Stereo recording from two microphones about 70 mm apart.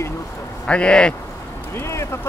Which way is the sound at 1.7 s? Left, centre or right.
Left.